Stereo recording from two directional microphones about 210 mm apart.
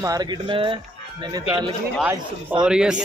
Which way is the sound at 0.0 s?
20° right (ahead or behind).